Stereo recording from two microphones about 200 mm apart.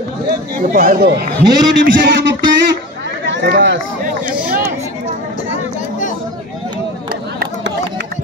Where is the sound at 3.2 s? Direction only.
55° right (ahead or behind).